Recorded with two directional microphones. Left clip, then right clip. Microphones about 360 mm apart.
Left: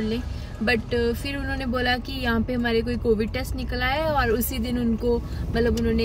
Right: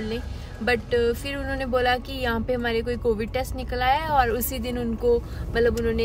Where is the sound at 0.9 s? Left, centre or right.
Centre.